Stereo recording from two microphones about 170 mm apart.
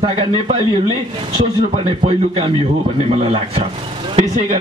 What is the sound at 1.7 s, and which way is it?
Speech, 40° right (ahead or behind).